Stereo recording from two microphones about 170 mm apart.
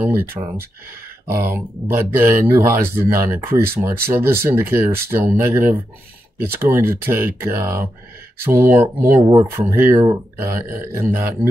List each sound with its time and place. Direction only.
0.0 s speech: 15° right (ahead or behind)